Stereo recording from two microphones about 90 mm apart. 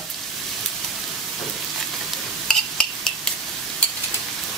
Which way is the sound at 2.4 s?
5° left (ahead or behind).